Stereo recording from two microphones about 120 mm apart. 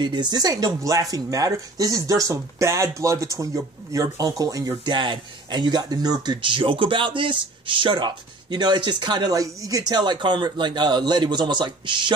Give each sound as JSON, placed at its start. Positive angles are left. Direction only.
{"t": 0.0, "sound": "speech", "side_deg": -40}